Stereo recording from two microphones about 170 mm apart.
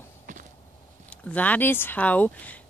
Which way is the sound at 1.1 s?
10° left (ahead or behind).